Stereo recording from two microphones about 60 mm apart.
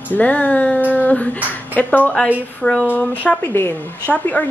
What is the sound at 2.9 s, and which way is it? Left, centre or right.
Speech, left.